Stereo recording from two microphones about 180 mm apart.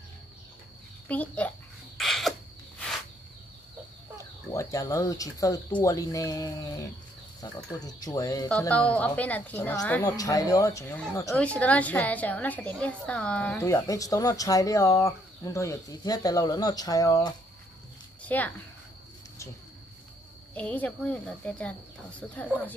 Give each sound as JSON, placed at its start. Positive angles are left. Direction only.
{"t": 1.0, "sound": "a woman's voice", "side_deg": 10}
{"t": 2.0, "sound": "a sound", "side_deg": 0}
{"t": 4.5, "sound": "a woman's voice", "side_deg": 20}
{"t": 8.5, "sound": "a woman's voice", "side_deg": 5}
{"t": 10.0, "sound": "a woman's voice", "side_deg": 20}
{"t": 18.2, "sound": "a sound", "side_deg": 10}
{"t": 20.5, "sound": "a woman's voice", "side_deg": 10}